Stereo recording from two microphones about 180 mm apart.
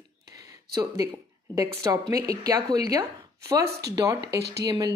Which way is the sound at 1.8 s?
20° right (ahead or behind).